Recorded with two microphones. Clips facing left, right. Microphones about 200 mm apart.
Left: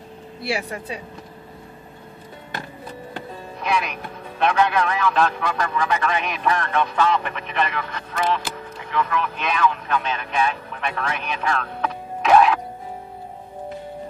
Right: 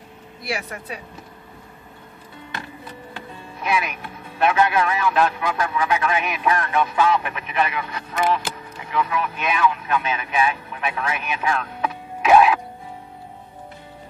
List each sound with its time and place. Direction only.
0.4 s speech: 30° left (ahead or behind)
3.6 s a man's voice: 5° right (ahead or behind)